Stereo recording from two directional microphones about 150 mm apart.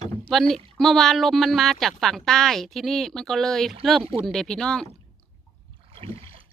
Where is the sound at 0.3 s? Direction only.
Centre (ahead or behind).